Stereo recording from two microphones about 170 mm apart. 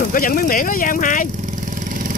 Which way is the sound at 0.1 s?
55° left (ahead or behind).